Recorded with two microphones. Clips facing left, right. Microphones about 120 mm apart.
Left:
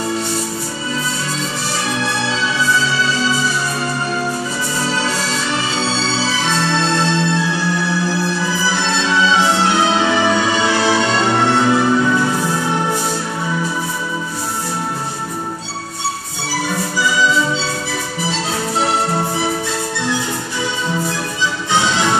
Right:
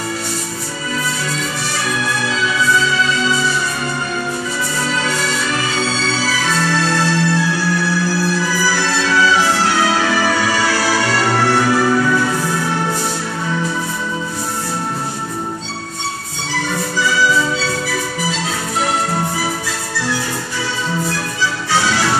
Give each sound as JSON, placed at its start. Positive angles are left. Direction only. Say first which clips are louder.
{"t": 1.9, "sound": "music", "louder": "even", "side_deg": 30}
{"t": 4.8, "sound": "music", "louder": "even", "side_deg": 30}
{"t": 17.6, "sound": "music", "louder": "right 2 dB", "side_deg": 30}
{"t": 21.7, "sound": "music", "louder": "left 1 dB", "side_deg": 20}